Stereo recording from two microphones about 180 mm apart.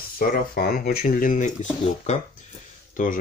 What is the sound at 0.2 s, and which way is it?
Speech, 55° left (ahead or behind).